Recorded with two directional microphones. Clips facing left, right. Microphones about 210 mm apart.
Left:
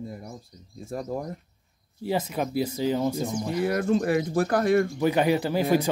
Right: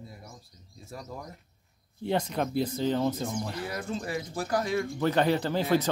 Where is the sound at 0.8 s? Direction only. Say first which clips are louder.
Left 10 dB; 50° left (ahead or behind).